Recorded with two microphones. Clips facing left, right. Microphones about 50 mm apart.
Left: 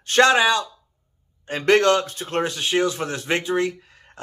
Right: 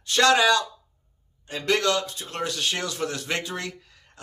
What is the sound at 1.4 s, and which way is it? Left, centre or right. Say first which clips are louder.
Speech: left 7 dB; left.